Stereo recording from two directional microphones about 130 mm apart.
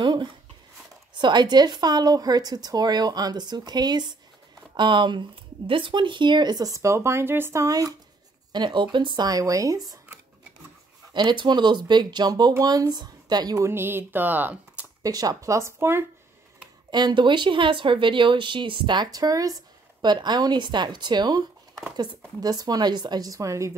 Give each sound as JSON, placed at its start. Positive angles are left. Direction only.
{"t": 0.0, "sound": "a sound", "side_deg": -35}
{"t": 1.1, "sound": "speech", "side_deg": -35}
{"t": 11.1, "sound": "speech", "side_deg": -35}
{"t": 13.7, "sound": "speech", "side_deg": -15}
{"t": 15.0, "sound": "speech", "side_deg": -30}
{"t": 16.9, "sound": "speech", "side_deg": -35}